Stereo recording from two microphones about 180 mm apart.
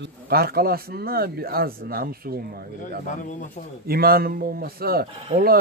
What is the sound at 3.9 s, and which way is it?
Speech, 55° right (ahead or behind).